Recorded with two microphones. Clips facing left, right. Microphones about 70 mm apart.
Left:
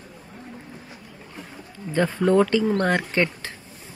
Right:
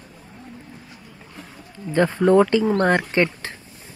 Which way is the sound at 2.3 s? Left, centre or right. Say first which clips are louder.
Right 2 dB; right.